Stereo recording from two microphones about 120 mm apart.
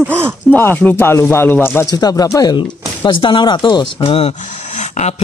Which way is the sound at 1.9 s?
35° left (ahead or behind).